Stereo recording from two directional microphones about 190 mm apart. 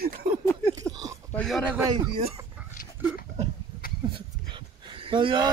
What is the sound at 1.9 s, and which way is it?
Speech, 30° right (ahead or behind).